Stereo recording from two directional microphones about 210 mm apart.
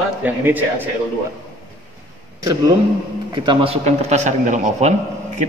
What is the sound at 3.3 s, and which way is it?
Speech, 20° right (ahead or behind).